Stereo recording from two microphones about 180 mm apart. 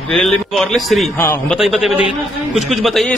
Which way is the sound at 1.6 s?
Centre (ahead or behind).